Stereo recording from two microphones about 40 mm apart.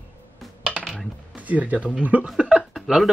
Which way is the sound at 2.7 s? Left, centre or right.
Centre.